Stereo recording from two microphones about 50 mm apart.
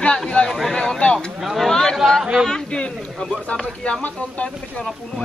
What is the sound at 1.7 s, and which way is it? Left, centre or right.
Speech, centre.